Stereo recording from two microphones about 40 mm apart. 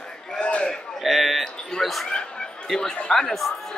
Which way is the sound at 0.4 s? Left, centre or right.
Left.